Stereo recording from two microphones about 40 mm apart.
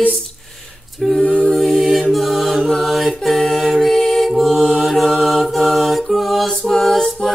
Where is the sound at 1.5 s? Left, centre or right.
Centre.